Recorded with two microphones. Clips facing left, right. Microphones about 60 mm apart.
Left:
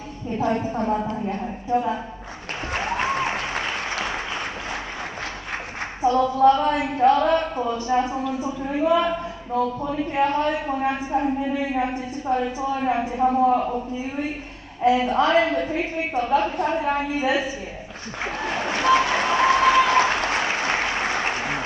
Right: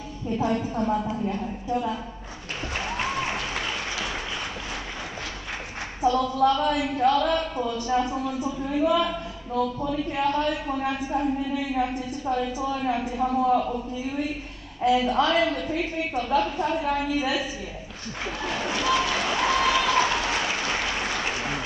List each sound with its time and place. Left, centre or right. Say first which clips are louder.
0.3 s a woman's voice: left 2 dB; left
2.8 s applause: left 5 dB; left
6.0 s a woman's voice: left 4 dB; left
18.2 s applause: left 3 dB; left